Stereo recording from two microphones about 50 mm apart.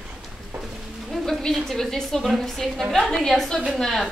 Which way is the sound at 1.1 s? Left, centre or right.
Centre.